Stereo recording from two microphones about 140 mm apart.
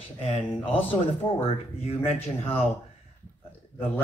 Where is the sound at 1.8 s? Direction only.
45° left (ahead or behind).